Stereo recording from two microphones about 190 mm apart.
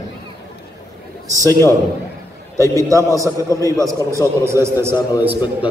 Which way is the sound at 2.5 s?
15° left (ahead or behind).